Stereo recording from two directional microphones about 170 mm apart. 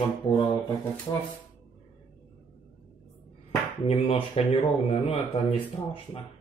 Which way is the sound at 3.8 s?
35° left (ahead or behind).